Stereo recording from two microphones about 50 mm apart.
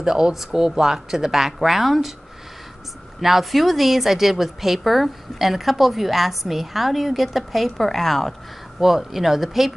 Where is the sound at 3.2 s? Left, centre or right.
Centre.